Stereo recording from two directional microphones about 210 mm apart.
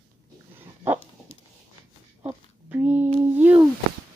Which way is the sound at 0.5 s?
10° right (ahead or behind).